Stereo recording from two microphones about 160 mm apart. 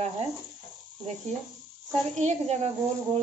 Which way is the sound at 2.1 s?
45° right (ahead or behind).